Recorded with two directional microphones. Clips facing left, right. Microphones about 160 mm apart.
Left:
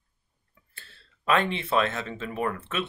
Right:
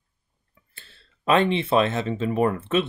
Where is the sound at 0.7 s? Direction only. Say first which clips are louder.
Even; 20° right (ahead or behind).